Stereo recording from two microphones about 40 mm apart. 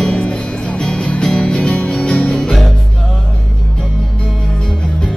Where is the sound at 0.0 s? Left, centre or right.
Left.